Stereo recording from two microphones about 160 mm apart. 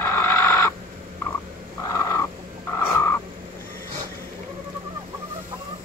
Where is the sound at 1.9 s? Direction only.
20° left (ahead or behind).